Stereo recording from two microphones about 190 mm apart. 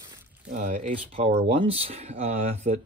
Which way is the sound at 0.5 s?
40° right (ahead or behind).